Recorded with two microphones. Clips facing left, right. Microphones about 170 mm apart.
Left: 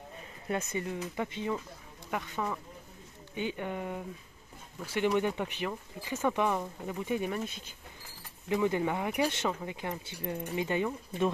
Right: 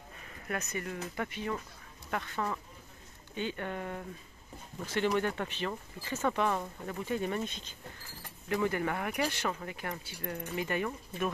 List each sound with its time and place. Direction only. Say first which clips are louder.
0.5 s speech: left 3 dB; 25° left (ahead or behind); by 7.7 s 5° left (ahead or behind)
8.5 s speech: left 2 dB; 20° left (ahead or behind)